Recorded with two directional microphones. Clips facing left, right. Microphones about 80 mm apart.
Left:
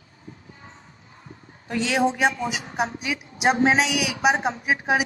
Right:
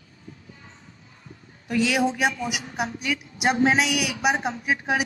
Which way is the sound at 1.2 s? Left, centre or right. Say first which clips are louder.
Right 1 dB; left.